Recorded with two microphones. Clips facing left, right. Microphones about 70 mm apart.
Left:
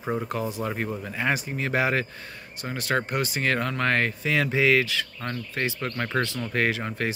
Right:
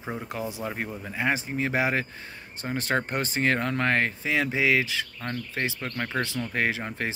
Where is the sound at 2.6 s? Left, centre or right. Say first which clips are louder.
Even; right.